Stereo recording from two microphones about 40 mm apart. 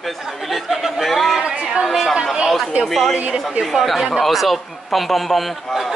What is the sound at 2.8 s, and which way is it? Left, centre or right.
A man's voice, centre.